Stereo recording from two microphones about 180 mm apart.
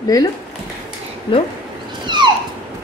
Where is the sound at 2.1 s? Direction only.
25° right (ahead or behind).